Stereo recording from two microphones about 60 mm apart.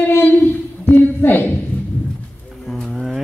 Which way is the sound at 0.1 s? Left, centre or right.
Left.